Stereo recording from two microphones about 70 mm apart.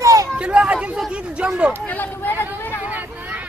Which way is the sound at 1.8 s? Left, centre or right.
Left.